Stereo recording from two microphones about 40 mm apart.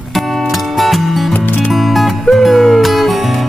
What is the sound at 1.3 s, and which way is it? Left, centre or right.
Music, left.